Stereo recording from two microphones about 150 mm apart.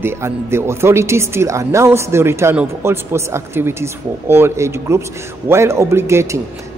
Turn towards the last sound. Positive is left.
turn(degrees=-15)  # may be behind; listen again after turning